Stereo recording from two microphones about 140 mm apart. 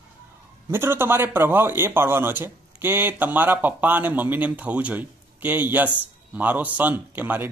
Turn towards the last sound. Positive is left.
turn(degrees=-15)  # may be behind; listen again after turning